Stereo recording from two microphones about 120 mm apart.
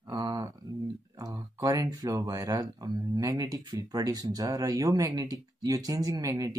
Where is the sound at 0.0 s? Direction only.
30° right (ahead or behind).